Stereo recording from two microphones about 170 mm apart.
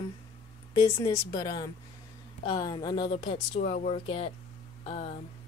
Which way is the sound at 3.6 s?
45° left (ahead or behind).